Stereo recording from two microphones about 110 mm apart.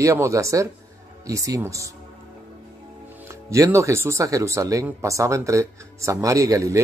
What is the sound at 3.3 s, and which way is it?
Speech, 25° right (ahead or behind).